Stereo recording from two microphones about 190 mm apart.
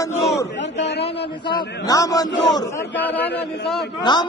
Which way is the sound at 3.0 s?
10° left (ahead or behind).